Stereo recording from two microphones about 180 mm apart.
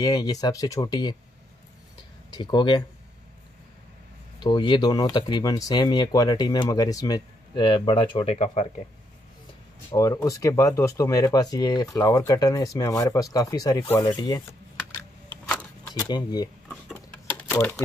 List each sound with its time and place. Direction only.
0.0 s speech: 20° left (ahead or behind)
2.3 s speech: 25° left (ahead or behind)
4.4 s speech: 25° left (ahead or behind)
9.8 s speech: 15° left (ahead or behind)
15.9 s speech: 25° left (ahead or behind)
16.6 s a sound: 5° left (ahead or behind)